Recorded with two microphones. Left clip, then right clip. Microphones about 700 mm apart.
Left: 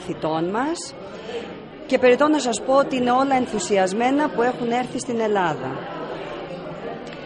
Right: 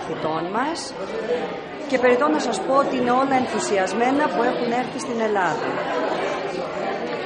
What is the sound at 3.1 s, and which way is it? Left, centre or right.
Speech, left.